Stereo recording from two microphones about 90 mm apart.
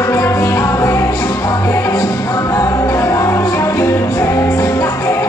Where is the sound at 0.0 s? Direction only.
30° left (ahead or behind).